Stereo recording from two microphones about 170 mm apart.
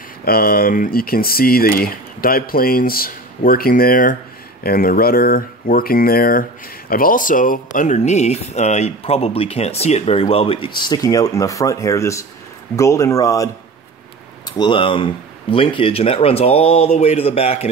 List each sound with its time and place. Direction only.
0.2 s speech: 60° left (ahead or behind); by 17.6 s 35° left (ahead or behind)